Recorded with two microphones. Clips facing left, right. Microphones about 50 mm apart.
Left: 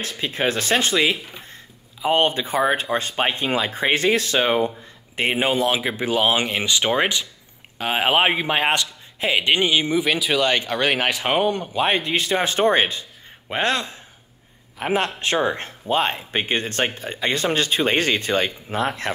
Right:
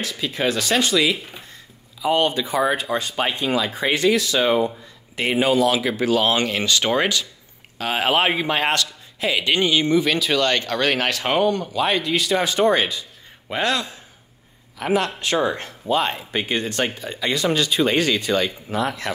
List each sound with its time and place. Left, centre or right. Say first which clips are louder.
0.0 s speech: even; left; by 8.8 s centre
9.2 s speech: left 1 dB; left